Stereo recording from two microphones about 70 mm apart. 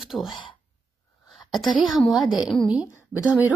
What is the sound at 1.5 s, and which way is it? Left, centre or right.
A woman's voice, centre.